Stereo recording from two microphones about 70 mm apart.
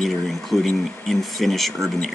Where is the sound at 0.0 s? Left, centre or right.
Centre.